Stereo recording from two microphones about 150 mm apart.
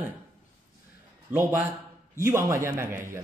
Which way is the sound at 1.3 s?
15° right (ahead or behind).